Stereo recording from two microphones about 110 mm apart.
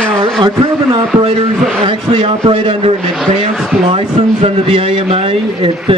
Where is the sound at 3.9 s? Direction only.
60° right (ahead or behind).